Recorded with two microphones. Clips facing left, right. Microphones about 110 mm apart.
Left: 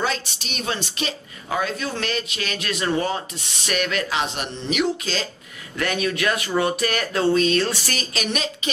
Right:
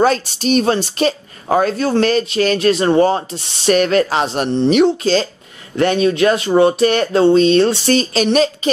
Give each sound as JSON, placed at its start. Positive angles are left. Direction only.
{"t": 0.0, "sound": "speech", "side_deg": -40}